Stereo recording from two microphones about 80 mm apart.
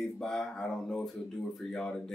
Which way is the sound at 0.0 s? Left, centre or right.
Centre.